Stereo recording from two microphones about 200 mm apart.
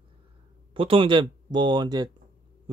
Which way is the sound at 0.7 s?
25° right (ahead or behind).